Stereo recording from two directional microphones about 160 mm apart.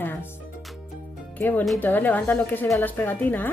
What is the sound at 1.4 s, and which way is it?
Speech, 10° left (ahead or behind).